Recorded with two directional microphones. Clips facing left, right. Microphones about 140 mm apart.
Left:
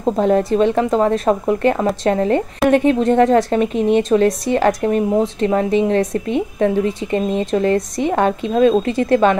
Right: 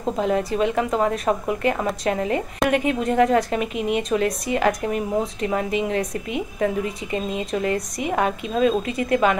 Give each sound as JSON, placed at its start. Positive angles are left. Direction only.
{"t": 0.0, "sound": "speech", "side_deg": 30}